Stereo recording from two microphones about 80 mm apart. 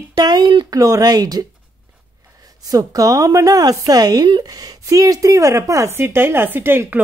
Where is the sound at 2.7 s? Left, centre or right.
Right.